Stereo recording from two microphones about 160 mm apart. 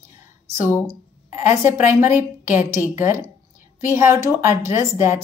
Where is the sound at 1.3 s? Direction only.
15° right (ahead or behind).